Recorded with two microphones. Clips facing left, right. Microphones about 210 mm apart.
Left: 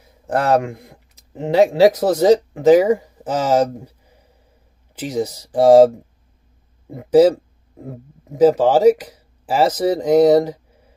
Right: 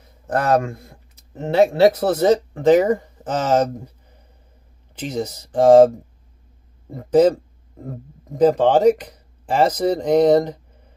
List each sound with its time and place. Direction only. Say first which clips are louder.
0.3 s speech: left 1 dB; 15° left (ahead or behind)